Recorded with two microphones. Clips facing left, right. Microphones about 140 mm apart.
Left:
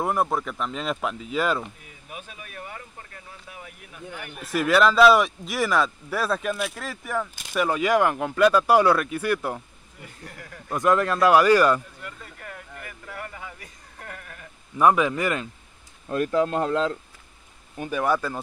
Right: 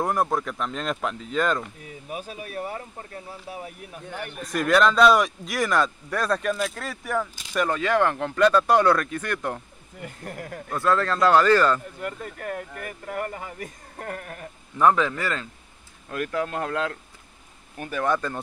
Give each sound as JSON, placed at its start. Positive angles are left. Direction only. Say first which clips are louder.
{"t": 0.0, "sound": "speech", "louder": "even", "side_deg": 0}
{"t": 2.0, "sound": "speech", "louder": "right 6 dB", "side_deg": -40}
{"t": 4.3, "sound": "speech", "louder": "even", "side_deg": 5}
{"t": 10.0, "sound": "speech", "louder": "right 7 dB", "side_deg": -50}
{"t": 10.7, "sound": "speech", "louder": "left 2 dB", "side_deg": 15}
{"t": 12.0, "sound": "speech", "louder": "right 8 dB", "side_deg": -50}
{"t": 14.8, "sound": "speech", "louder": "left 1 dB", "side_deg": 10}